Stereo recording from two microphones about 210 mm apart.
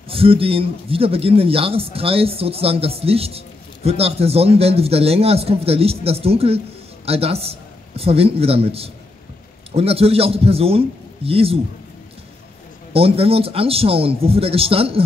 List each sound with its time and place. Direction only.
0.1 s a man's voice: 25° right (ahead or behind)
12.9 s speech: 25° right (ahead or behind)